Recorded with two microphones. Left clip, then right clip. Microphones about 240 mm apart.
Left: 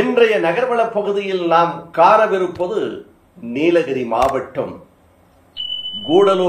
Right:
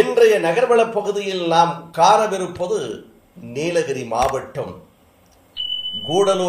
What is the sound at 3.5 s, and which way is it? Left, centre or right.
Speech, right.